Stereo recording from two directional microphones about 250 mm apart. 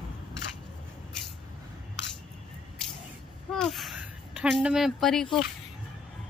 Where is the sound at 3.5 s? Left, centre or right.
Centre.